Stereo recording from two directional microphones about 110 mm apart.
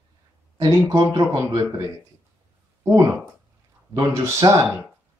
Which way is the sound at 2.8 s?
25° right (ahead or behind).